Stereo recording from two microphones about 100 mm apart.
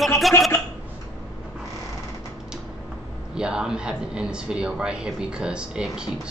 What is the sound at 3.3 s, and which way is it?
A man's voice, 10° right (ahead or behind).